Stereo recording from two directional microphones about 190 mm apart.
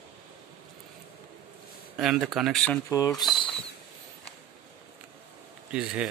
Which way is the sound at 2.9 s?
20° left (ahead or behind).